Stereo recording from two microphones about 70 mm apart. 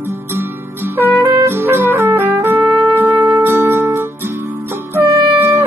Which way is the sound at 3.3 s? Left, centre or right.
Right.